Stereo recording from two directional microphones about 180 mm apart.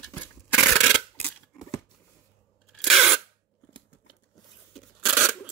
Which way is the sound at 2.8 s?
Centre (ahead or behind).